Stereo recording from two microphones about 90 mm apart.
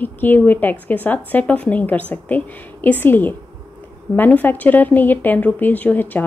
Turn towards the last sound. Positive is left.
turn(degrees=20)  # may be behind; listen again after turning